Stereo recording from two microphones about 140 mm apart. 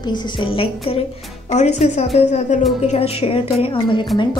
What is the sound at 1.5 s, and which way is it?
A woman's voice, 55° left (ahead or behind).